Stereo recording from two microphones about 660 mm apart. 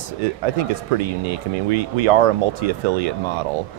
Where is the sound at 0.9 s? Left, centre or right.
Right.